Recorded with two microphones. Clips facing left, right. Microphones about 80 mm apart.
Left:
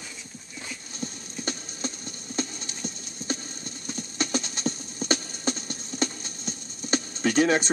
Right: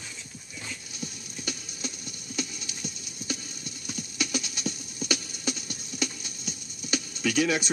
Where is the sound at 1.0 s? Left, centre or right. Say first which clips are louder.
Left 5 dB; left.